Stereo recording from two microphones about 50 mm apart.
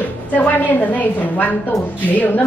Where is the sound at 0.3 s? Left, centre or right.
Left.